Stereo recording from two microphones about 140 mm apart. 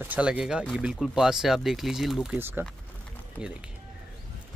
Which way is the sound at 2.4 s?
15° right (ahead or behind).